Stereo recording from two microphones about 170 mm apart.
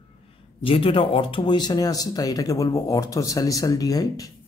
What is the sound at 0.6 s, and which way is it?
Speech, 30° left (ahead or behind).